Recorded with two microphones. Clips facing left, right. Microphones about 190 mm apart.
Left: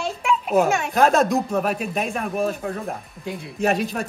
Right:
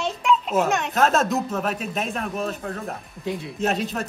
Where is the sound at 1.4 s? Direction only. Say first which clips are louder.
Left 3 dB; 15° left (ahead or behind).